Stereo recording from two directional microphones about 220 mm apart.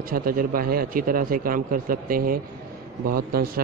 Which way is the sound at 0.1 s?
40° right (ahead or behind).